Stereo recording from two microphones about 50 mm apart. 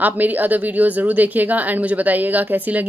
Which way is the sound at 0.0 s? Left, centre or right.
Right.